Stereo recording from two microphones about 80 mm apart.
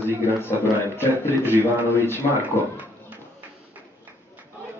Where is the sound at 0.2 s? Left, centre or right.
Left.